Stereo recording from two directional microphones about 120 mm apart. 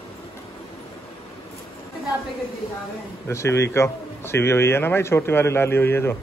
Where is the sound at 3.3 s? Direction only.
25° left (ahead or behind).